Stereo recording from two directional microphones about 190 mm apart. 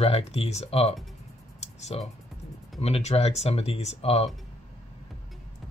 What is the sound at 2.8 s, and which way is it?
Speech, 35° left (ahead or behind).